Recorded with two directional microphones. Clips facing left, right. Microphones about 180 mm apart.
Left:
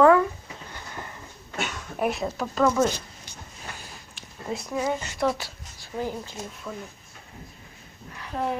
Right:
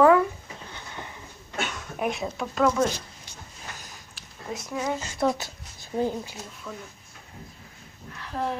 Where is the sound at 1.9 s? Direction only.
Centre (ahead or behind).